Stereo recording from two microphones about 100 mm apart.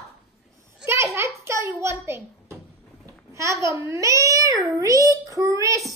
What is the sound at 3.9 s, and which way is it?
Cat, 30° right (ahead or behind).